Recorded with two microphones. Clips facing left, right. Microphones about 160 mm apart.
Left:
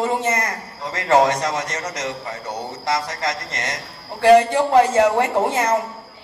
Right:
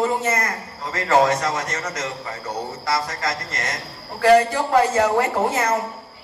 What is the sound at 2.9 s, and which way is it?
Speech, 30° left (ahead or behind).